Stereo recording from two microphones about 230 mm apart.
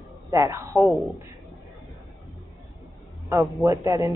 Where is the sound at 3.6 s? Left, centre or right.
Centre.